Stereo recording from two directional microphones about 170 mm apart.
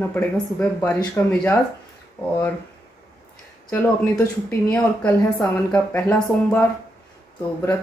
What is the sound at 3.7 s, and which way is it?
Speech, 10° left (ahead or behind).